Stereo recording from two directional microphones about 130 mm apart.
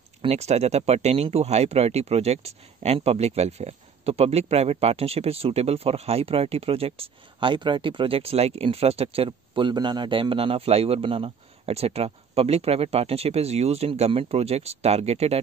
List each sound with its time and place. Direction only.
0.2 s speech: 55° right (ahead or behind)